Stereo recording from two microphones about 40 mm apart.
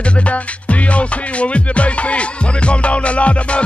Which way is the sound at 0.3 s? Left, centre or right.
Left.